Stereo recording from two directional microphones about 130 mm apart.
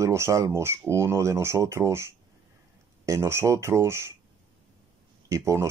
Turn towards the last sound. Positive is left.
turn(degrees=-25)  # may be behind; listen again after turning